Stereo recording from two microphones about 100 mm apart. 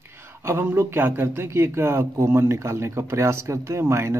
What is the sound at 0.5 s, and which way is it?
A man's voice, 25° right (ahead or behind).